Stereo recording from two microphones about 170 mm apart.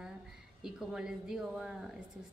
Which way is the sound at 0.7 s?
5° right (ahead or behind).